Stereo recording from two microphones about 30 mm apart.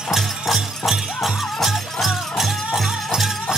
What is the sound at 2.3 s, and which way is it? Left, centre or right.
Music, centre.